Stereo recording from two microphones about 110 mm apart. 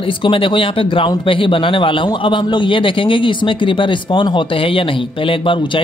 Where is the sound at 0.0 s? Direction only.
50° left (ahead or behind).